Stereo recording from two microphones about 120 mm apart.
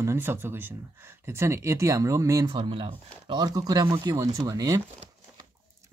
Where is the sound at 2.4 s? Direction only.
45° right (ahead or behind).